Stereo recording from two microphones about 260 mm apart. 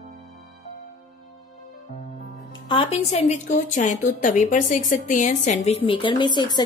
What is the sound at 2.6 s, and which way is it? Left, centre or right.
A woman's voice, left.